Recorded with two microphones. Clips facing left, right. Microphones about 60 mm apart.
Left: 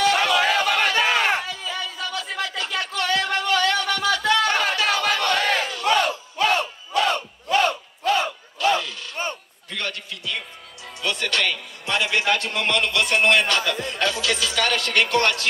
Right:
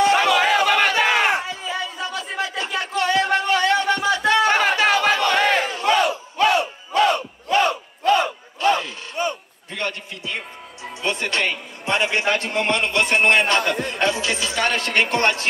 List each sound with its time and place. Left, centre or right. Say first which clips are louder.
0.0 s battle cry: right 3 dB; right
8.6 s a sound: right 2 dB; right
11.0 s a man's voice: right 1 dB; right